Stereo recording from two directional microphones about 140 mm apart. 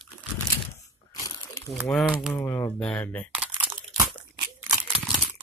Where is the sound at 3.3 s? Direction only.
5° right (ahead or behind).